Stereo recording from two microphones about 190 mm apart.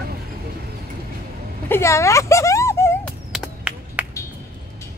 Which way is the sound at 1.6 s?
15° left (ahead or behind).